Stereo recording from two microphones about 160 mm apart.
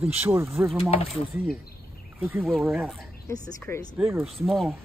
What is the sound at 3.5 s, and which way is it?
Speech, 15° left (ahead or behind).